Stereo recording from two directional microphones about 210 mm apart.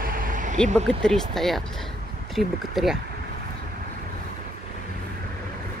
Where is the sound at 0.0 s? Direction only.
40° right (ahead or behind).